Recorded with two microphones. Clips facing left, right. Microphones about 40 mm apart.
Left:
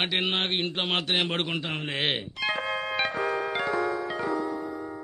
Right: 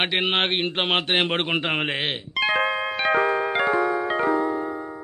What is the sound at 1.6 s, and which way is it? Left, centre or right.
Speech, right.